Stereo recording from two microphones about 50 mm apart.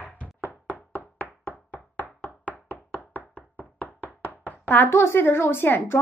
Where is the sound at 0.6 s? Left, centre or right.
Left.